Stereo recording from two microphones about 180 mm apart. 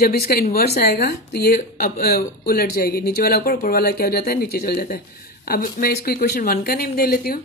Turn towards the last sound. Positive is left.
turn(degrees=55)  # may be behind; listen again after turning